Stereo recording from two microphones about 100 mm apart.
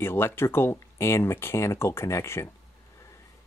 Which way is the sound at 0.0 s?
25° left (ahead or behind).